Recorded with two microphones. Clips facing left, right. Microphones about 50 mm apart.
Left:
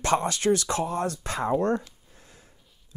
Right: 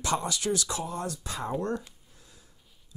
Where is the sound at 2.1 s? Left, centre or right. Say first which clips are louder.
Left 4 dB; left.